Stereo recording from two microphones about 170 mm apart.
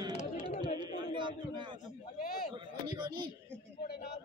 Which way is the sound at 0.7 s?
30° right (ahead or behind).